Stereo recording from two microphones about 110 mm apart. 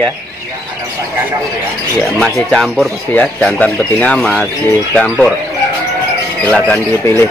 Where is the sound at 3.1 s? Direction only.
15° left (ahead or behind).